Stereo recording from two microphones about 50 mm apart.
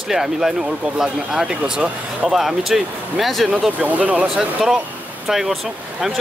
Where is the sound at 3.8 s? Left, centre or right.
Right.